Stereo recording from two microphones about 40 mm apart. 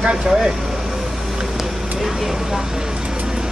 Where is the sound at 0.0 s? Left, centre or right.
Centre.